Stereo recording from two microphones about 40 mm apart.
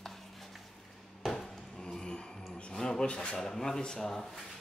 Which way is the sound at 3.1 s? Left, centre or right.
Left.